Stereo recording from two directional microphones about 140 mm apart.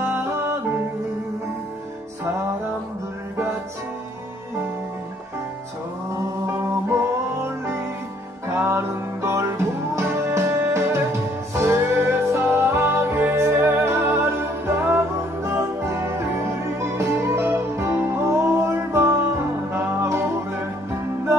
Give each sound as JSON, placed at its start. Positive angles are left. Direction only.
{"t": 0.0, "sound": "music", "side_deg": -15}
{"t": 6.4, "sound": "music", "side_deg": -20}
{"t": 8.5, "sound": "music", "side_deg": -20}